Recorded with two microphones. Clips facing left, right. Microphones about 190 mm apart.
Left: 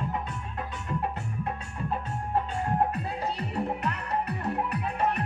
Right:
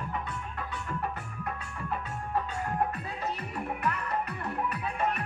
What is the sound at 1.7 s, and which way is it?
Music, 30° left (ahead or behind).